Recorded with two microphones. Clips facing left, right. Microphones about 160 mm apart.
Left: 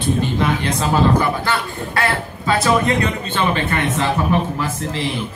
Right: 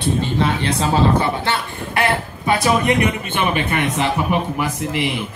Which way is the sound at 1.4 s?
20° right (ahead or behind).